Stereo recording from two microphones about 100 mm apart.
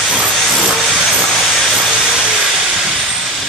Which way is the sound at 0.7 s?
Centre (ahead or behind).